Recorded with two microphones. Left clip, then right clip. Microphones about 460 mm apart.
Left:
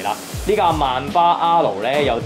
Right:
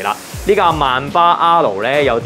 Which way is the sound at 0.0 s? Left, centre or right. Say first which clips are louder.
Right 4 dB; right.